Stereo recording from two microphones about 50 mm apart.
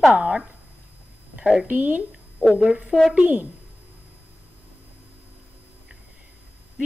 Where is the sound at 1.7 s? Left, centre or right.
Right.